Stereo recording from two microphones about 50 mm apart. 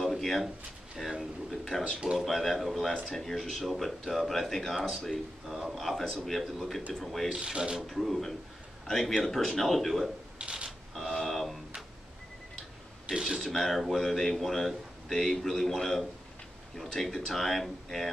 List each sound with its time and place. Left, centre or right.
0.0 s a sound: centre
1.5 s speech: centre
1.9 s mechanisms: centre
2.1 s speech: centre
5.5 s speech: centre
7.4 s mechanisms: centre
7.8 s speech: centre
10.4 s creak: centre
11.2 s a sound: centre
13.0 s a sound: centre
13.4 s speech: centre